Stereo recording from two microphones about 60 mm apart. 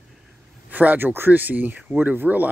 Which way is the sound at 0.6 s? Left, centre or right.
Right.